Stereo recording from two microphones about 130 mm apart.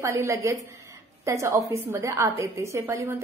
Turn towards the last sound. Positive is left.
turn(degrees=-20)  # may be behind; listen again after turning